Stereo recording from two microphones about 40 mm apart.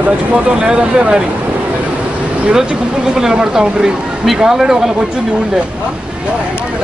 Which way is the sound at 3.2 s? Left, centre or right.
Centre.